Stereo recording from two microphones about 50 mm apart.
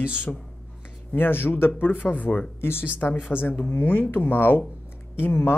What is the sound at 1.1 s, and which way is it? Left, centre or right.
Speech, left.